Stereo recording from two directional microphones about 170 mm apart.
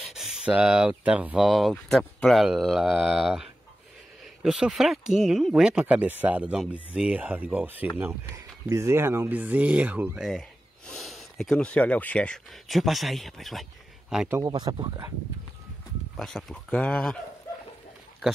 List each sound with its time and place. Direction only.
0.1 s speech: 5° right (ahead or behind)
14.3 s speech: 20° right (ahead or behind)
16.2 s speech: centre (ahead or behind)